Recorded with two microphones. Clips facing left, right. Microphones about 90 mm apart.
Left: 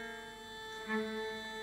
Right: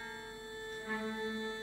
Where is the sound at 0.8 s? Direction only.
10° left (ahead or behind).